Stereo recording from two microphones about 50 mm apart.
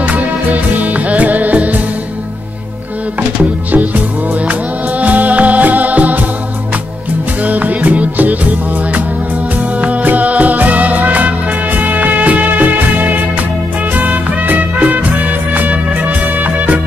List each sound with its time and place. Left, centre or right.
0.0 s music: right
3.2 s music: right
7.4 s music: right